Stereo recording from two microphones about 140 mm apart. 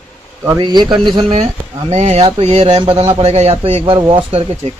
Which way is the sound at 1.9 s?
55° right (ahead or behind).